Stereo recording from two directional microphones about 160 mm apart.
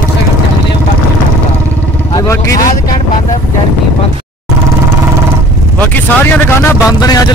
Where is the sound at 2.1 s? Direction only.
20° left (ahead or behind).